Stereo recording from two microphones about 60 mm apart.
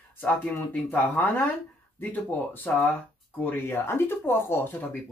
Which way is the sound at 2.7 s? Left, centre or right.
Left.